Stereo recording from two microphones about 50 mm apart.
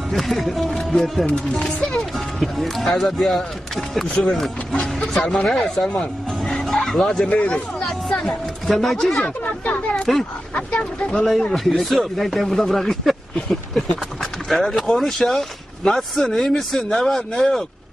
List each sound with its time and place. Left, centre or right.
0.1 s speech: centre
1.6 s speech: centre
2.0 s speech: centre
5.9 s bow-wow: centre
7.4 s music: centre
8.7 s speech: centre
10.5 s speech: left
11.1 s speech: centre